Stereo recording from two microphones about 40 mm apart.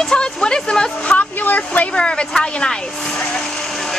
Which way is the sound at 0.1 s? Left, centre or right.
Left.